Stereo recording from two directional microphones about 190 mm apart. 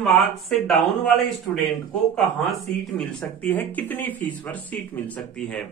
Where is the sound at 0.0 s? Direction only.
Centre (ahead or behind).